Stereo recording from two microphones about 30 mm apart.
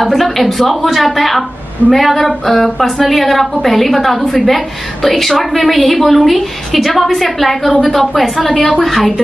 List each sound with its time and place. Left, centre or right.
0.0 s a woman's voice: centre